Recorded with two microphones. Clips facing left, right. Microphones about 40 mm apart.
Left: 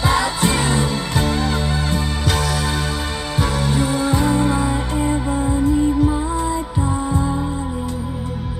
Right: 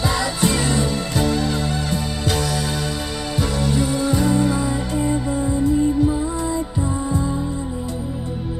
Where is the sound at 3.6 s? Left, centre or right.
Left.